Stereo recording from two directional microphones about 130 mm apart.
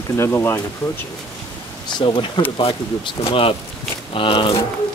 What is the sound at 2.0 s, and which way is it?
Speech, 40° left (ahead or behind).